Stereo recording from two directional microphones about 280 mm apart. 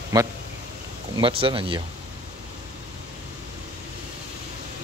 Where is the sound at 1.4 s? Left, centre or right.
Centre.